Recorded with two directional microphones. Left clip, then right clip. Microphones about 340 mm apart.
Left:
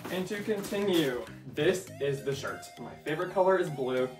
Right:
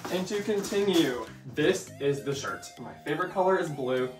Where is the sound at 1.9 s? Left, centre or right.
Centre.